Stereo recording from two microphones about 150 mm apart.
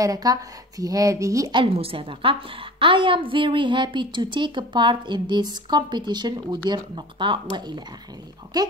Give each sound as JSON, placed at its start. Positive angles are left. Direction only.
{"t": 0.0, "sound": "speech", "side_deg": -25}
{"t": 1.5, "sound": "a woman's voice", "side_deg": -40}